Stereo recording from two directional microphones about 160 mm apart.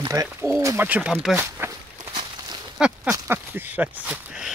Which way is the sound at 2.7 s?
5° right (ahead or behind).